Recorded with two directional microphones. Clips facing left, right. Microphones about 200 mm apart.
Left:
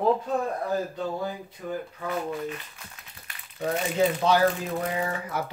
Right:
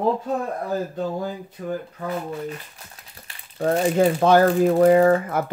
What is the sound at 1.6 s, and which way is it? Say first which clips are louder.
Speech: right 6 dB; 45° right (ahead or behind).